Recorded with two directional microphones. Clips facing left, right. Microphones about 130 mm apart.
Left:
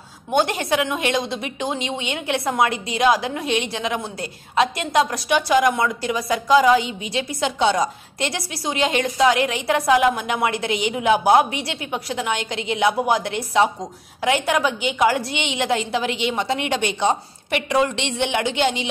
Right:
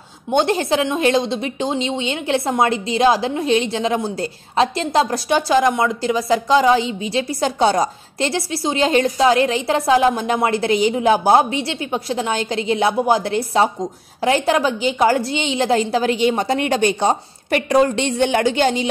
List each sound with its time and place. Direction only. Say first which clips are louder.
0.3 s a woman's voice: right 3 dB; 25° right (ahead or behind)